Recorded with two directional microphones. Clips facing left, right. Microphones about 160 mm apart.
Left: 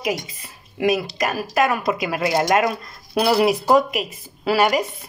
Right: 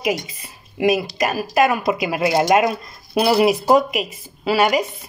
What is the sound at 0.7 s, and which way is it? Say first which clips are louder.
Speech: right 2 dB; 10° right (ahead or behind).